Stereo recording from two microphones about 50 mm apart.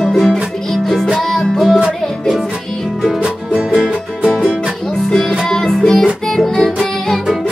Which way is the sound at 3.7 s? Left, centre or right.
Centre.